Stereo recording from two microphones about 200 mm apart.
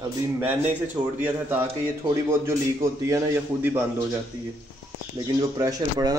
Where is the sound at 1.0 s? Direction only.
10° right (ahead or behind).